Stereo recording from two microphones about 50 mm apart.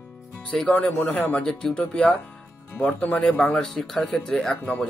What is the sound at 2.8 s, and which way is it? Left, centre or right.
Speech, left.